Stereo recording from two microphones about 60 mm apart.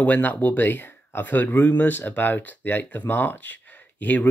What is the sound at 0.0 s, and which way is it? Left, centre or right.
Speech, left.